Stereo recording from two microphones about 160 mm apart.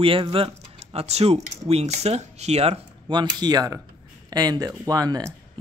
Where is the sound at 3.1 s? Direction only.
30° right (ahead or behind).